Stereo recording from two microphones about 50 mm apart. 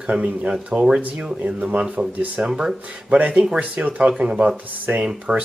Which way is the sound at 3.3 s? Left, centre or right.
Centre.